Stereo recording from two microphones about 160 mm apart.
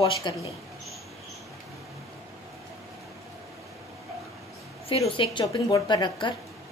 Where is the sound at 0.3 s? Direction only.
30° left (ahead or behind).